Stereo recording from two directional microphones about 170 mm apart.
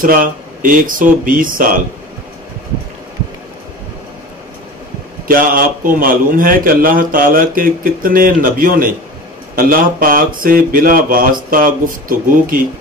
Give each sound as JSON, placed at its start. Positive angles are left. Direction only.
{"t": 0.0, "sound": "speech", "side_deg": -55}
{"t": 5.3, "sound": "a man's voice", "side_deg": -55}